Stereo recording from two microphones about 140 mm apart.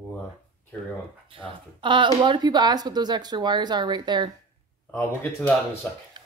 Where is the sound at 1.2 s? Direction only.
35° right (ahead or behind).